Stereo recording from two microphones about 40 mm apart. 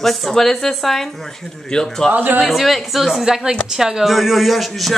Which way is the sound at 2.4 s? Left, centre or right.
Centre.